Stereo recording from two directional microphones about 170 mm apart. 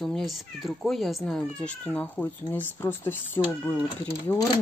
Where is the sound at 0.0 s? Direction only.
Centre (ahead or behind).